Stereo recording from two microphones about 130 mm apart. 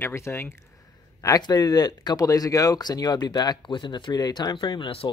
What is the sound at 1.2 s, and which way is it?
Speech, 30° left (ahead or behind).